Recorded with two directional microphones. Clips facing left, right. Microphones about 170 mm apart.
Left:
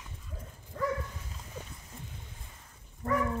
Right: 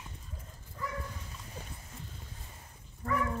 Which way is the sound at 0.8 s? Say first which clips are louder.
Left 8 dB; 60° left (ahead or behind).